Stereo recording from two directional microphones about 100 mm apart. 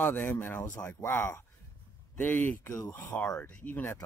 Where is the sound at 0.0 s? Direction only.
20° left (ahead or behind).